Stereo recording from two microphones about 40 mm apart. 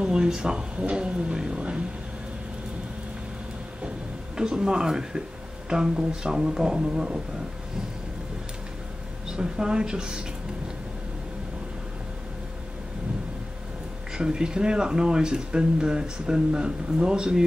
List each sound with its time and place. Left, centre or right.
0.0 s speech: centre
4.4 s speech: centre
9.4 s speech: right
14.1 s speech: centre